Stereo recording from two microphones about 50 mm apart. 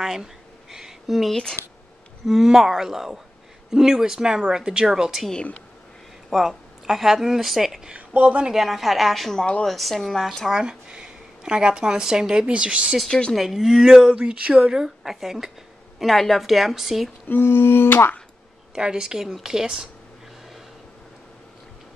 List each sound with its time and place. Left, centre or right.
0.0 s a sound: centre
1.3 s a woman's voice: centre
2.2 s speech: centre
6.3 s a woman's voice: centre
7.9 s speech: right
8.5 s a woman's voice: centre
9.4 s a woman's voice: centre
9.7 s a woman's voice: centre
10.5 s speech: centre
13.3 s a woman's voice: centre
17.3 s a sound: left
18.8 s speech: centre